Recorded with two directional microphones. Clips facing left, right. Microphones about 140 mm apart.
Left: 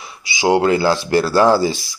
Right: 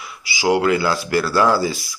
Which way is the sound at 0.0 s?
25° left (ahead or behind).